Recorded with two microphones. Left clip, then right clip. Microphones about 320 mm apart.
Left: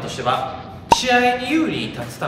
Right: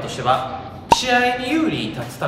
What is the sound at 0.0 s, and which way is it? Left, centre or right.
Speech, centre.